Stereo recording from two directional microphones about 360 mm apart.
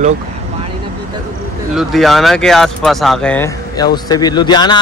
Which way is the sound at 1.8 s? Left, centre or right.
Centre.